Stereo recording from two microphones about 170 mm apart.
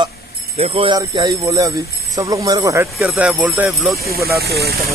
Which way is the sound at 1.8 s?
65° left (ahead or behind).